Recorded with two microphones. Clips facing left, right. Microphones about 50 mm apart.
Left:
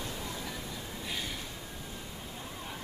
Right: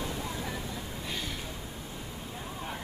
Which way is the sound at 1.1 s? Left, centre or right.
Centre.